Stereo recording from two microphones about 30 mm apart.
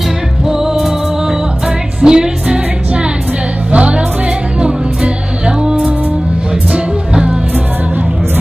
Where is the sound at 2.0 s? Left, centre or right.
Right.